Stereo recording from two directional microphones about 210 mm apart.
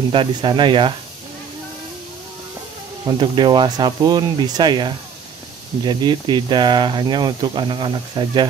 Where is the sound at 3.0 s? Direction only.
20° right (ahead or behind).